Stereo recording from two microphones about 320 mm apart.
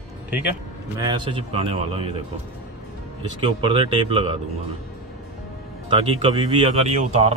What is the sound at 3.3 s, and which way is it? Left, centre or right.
Speech, centre.